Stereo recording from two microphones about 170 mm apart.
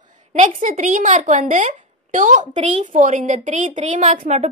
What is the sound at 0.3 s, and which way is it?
A woman's voice, 45° right (ahead or behind).